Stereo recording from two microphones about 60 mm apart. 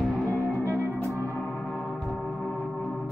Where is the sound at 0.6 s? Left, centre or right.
Right.